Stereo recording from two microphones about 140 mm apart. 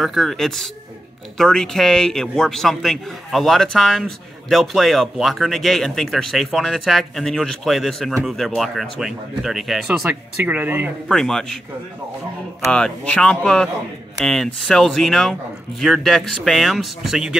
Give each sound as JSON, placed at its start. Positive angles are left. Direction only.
{"t": 0.0, "sound": "a man's voice", "side_deg": 0}
{"t": 11.1, "sound": "a man's voice", "side_deg": 5}
{"t": 12.7, "sound": "a man's voice", "side_deg": 5}